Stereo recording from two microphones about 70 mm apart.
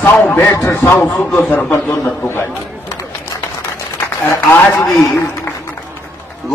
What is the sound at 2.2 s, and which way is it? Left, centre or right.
Speech, left.